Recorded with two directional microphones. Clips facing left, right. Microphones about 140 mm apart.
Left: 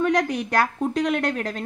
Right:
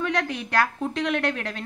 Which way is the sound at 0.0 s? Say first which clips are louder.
Left 5 dB; 40° left (ahead or behind).